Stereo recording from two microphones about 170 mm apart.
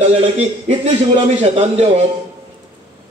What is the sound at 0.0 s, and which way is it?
A man's voice, 35° right (ahead or behind).